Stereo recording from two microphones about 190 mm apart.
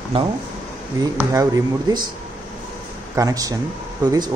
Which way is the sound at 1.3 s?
20° right (ahead or behind).